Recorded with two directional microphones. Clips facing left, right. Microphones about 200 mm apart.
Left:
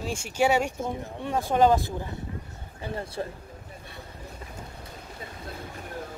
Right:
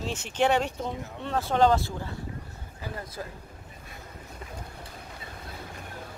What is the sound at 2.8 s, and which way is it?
Speech, 30° left (ahead or behind).